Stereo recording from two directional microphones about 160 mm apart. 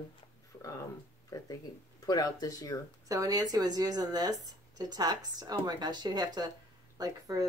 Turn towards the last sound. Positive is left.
turn(degrees=-20)  # may be behind; listen again after turning